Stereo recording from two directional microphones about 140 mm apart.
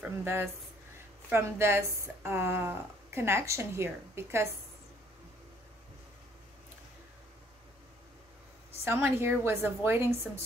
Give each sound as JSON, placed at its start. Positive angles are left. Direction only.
{"t": 0.0, "sound": "speech", "side_deg": -15}
{"t": 8.8, "sound": "a woman's voice", "side_deg": -20}